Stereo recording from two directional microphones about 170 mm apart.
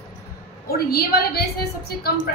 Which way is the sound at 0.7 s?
65° left (ahead or behind).